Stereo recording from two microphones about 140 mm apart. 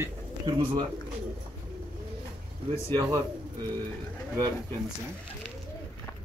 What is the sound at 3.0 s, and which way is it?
Speech, 25° right (ahead or behind).